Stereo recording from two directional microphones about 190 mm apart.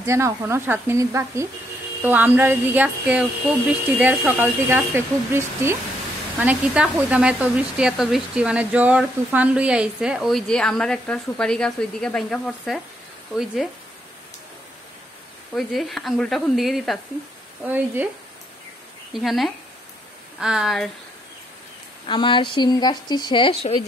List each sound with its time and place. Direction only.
0.0 s speech: 15° right (ahead or behind); by 12.8 s centre (ahead or behind)
15.5 s speech: centre (ahead or behind)
19.1 s speech: centre (ahead or behind)
22.0 s speech: 25° left (ahead or behind)